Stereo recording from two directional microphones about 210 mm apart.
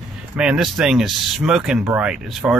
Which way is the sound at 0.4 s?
Centre (ahead or behind).